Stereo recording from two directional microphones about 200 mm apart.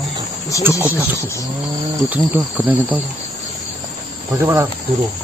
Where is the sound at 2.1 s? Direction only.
10° right (ahead or behind).